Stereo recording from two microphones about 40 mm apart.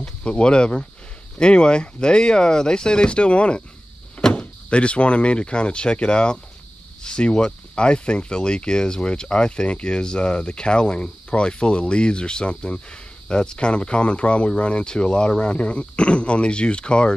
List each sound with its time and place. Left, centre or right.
0.0 s speech: left